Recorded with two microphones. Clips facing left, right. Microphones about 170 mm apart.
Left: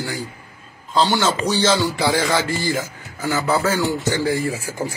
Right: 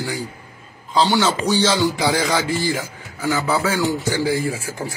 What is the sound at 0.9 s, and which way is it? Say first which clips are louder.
A man's voice: right 1 dB; 10° right (ahead or behind).